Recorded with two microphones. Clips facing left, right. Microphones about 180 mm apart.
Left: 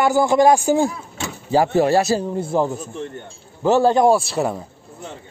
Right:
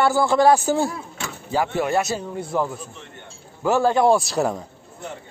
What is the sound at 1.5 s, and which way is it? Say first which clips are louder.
A man's voice: left 6 dB; 40° left (ahead or behind).